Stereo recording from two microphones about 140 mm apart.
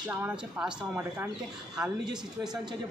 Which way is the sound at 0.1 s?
10° right (ahead or behind).